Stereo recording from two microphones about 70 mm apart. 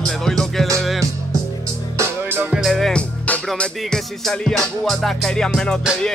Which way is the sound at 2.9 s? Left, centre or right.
Left.